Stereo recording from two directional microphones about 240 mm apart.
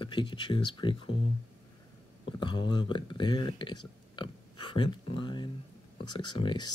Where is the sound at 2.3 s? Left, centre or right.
Centre.